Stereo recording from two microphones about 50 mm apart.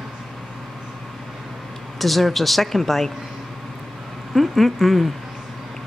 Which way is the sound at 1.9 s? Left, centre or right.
Centre.